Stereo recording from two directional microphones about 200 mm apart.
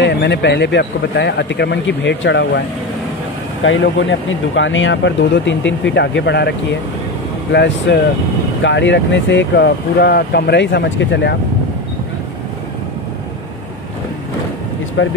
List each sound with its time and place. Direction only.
0.0 s speech: 55° left (ahead or behind)
3.6 s speech: 70° left (ahead or behind)
15.0 s speech: 70° left (ahead or behind)